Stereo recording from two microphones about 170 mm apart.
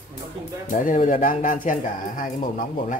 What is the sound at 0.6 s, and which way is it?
Speech, 50° left (ahead or behind).